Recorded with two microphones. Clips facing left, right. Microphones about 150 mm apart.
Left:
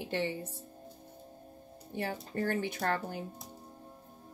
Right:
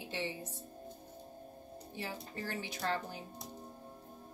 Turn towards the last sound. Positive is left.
turn(degrees=55)  # may be behind; listen again after turning